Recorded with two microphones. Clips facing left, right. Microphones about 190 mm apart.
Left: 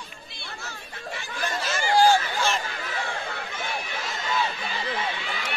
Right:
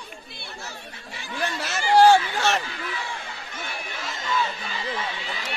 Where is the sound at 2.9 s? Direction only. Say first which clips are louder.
Left 3 dB; 55° left (ahead or behind).